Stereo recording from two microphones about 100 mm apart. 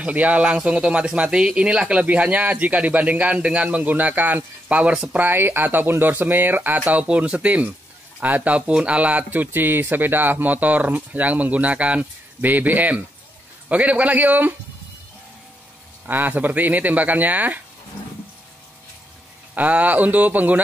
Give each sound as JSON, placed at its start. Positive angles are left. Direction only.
{"t": 0.0, "sound": "speech", "side_deg": -15}
{"t": 5.2, "sound": "speech", "side_deg": -20}
{"t": 16.1, "sound": "speech", "side_deg": -20}
{"t": 19.5, "sound": "speech", "side_deg": -15}